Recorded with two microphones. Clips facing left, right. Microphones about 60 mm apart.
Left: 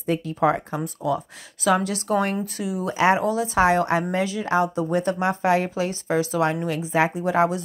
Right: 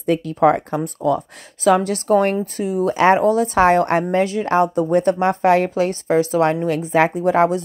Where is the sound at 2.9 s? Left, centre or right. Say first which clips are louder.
Right 5 dB; right.